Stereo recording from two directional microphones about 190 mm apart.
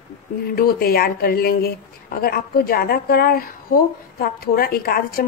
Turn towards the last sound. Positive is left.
turn(degrees=50)  # may be behind; listen again after turning